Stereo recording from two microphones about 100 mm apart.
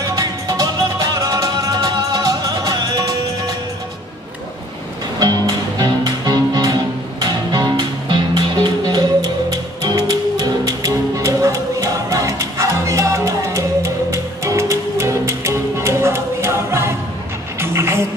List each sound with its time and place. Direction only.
0.0 s music: 35° right (ahead or behind)
5.2 s music: 40° right (ahead or behind)